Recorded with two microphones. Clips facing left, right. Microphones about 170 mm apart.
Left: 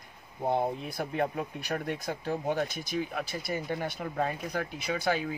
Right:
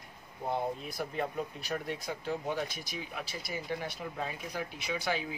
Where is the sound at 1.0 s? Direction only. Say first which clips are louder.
Left 4 dB; 55° left (ahead or behind).